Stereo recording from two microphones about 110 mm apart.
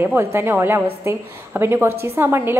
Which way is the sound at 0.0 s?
25° right (ahead or behind).